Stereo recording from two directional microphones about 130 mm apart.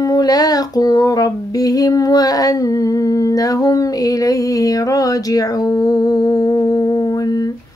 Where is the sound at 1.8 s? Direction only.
30° left (ahead or behind).